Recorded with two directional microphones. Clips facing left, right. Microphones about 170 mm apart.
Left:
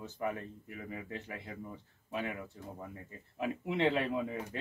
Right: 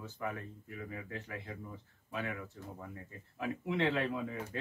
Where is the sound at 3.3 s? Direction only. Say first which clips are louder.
Left 1 dB; 20° left (ahead or behind).